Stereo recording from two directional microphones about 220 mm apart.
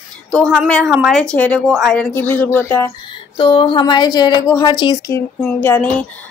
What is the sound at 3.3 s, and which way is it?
A woman's voice, 25° left (ahead or behind).